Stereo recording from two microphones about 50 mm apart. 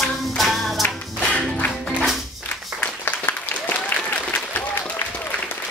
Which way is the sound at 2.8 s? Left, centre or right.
Left.